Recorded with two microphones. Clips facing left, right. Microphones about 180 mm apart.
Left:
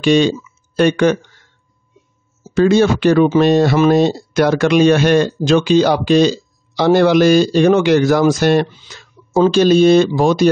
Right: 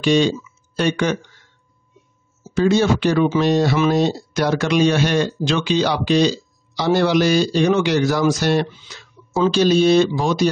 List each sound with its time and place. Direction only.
0.0 s speech: 65° left (ahead or behind)
0.4 s a sound: 55° left (ahead or behind)
2.5 s speech: 60° left (ahead or behind)